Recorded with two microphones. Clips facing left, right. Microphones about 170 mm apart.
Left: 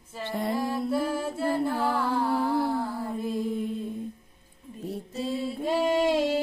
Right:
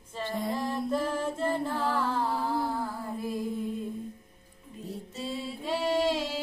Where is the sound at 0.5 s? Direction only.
10° left (ahead or behind).